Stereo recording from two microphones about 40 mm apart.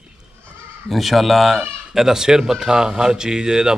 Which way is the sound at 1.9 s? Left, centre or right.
Centre.